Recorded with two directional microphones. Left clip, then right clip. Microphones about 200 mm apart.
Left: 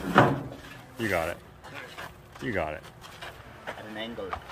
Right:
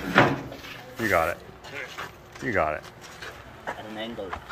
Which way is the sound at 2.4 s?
15° left (ahead or behind).